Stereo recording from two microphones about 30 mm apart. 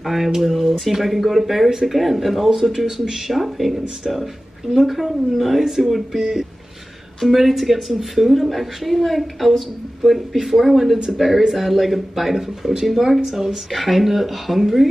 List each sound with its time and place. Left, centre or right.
0.0 s a woman's voice: centre
6.1 s speech: centre
7.3 s a woman's voice: centre